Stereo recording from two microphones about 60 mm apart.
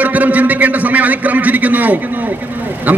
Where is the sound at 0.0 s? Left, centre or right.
Right.